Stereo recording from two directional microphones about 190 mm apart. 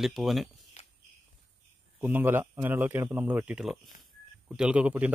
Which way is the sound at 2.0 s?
10° right (ahead or behind).